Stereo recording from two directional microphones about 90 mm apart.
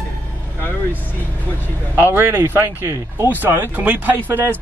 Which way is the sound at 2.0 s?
25° right (ahead or behind).